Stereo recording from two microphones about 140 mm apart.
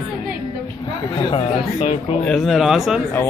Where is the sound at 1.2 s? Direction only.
40° left (ahead or behind).